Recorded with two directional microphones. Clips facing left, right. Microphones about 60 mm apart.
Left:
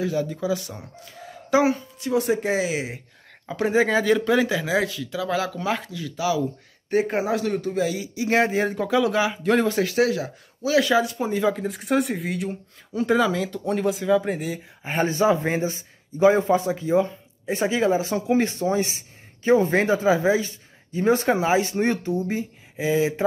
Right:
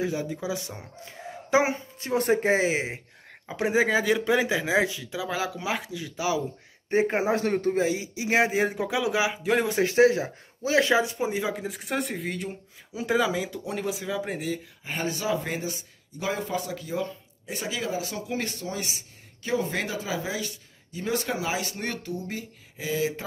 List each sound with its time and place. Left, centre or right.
0.0 s speech: centre
3.4 s speech: centre
9.7 s speech: right
11.1 s speech: centre
14.8 s speech: left